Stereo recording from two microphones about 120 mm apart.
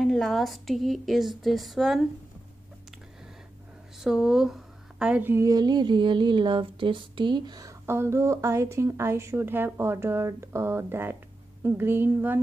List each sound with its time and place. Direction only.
0.0 s a woman's voice: 5° left (ahead or behind)
4.0 s a woman's voice: 5° right (ahead or behind)
5.5 s speech: 35° right (ahead or behind)
7.8 s a woman's voice: 20° right (ahead or behind)